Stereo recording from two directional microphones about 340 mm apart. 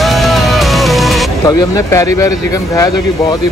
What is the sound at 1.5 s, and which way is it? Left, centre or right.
Speech, centre.